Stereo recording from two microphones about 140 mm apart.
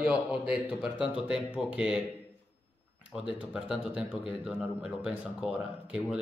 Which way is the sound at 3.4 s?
5° right (ahead or behind).